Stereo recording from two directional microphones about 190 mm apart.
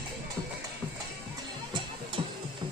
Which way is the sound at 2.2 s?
30° right (ahead or behind).